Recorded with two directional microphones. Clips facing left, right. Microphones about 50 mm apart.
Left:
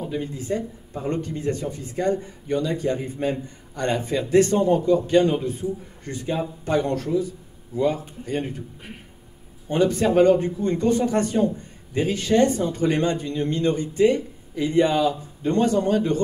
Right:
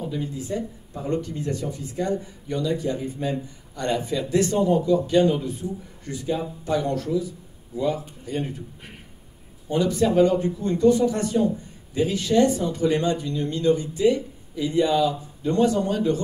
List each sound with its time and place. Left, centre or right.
0.1 s speech: left
8.8 s speech: centre
9.7 s speech: left